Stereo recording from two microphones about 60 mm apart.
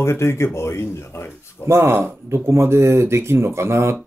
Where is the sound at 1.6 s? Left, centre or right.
Right.